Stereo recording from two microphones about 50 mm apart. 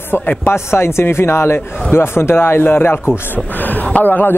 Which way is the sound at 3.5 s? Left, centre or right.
Left.